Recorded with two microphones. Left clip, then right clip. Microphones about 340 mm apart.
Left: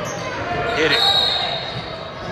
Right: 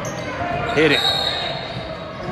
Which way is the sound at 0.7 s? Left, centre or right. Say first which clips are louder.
Right 2 dB; centre.